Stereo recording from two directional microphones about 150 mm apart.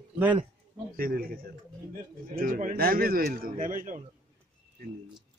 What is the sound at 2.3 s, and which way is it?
A man's voice, 65° right (ahead or behind).